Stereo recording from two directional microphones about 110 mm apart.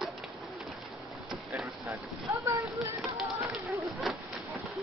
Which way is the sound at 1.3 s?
5° right (ahead or behind).